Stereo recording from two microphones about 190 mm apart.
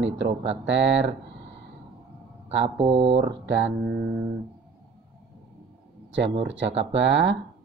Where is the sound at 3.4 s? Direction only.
70° right (ahead or behind).